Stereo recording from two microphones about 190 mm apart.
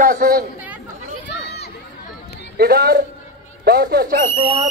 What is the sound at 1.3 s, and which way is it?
Run, 60° left (ahead or behind).